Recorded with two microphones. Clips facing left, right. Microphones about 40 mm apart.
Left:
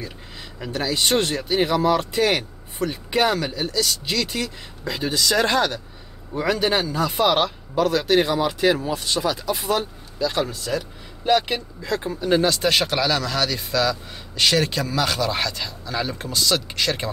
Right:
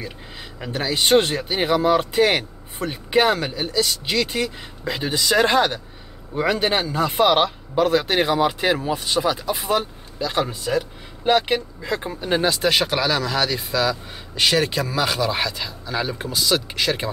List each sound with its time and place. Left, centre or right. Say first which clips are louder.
0.0 s speech: right 1 dB; centre